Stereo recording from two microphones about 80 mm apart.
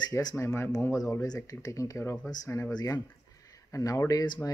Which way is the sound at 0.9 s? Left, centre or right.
Left.